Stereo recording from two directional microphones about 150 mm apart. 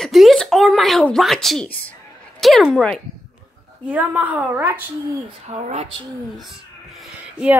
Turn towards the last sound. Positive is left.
turn(degrees=-10)  # may be behind; listen again after turning